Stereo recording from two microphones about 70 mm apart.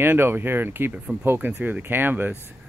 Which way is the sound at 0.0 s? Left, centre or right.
Right.